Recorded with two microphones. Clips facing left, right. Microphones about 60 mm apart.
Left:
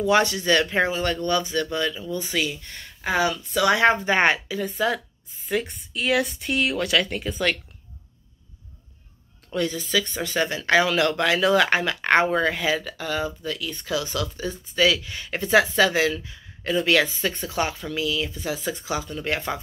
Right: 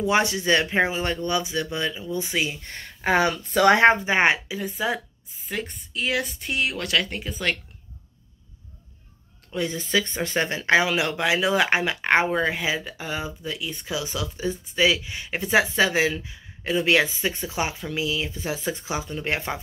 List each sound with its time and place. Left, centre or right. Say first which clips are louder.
0.0 s speech: left 2 dB; right
4.0 s speech: even; centre
5.4 s speech: left 5 dB; centre
9.6 s speech: even; right